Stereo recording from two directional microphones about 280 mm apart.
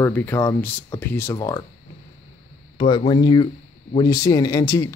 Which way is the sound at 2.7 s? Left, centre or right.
Centre.